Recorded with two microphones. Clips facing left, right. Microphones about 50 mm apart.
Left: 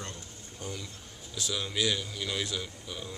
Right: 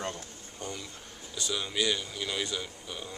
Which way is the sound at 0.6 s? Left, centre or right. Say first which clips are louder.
Right 1 dB; centre.